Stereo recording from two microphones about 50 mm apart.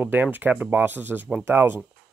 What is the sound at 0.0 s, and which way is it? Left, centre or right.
Speech, right.